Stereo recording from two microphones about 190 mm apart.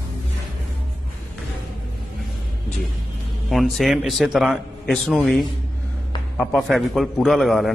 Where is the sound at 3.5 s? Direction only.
Centre (ahead or behind).